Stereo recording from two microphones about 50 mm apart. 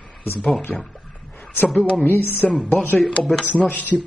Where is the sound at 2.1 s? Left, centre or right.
Left.